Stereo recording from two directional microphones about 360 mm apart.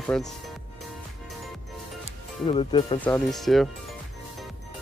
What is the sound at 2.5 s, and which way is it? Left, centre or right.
Speech, centre.